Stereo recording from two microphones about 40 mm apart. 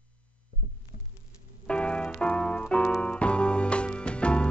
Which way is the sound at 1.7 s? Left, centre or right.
Left.